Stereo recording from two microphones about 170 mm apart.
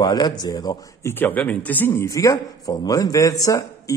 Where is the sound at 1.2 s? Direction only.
10° left (ahead or behind).